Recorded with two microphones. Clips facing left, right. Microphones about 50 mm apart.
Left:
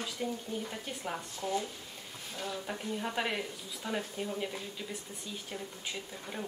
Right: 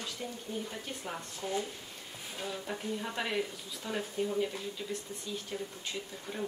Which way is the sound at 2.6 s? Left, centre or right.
Centre.